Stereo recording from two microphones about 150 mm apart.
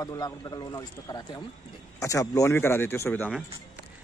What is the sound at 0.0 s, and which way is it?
Speech, 25° left (ahead or behind).